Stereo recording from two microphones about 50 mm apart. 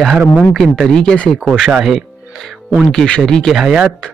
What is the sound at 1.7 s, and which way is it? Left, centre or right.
Speech, centre.